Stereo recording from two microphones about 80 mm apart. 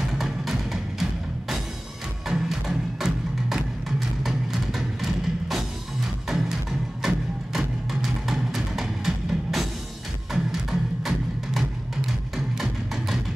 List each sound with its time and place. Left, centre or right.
0.2 s music: centre
2.2 s music: centre